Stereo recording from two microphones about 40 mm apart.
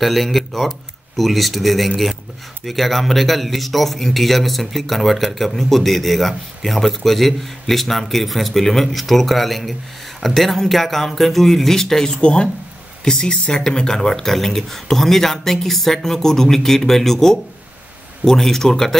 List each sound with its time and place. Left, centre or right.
0.0 s a man's voice: centre
12.2 s speech: left